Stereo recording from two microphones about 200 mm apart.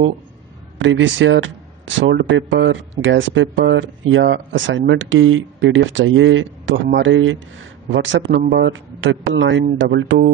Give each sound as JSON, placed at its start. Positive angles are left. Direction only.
{"t": 0.7, "sound": "speech", "side_deg": -70}